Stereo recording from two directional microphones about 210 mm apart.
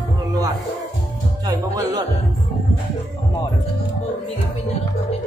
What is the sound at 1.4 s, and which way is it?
Music, 15° right (ahead or behind).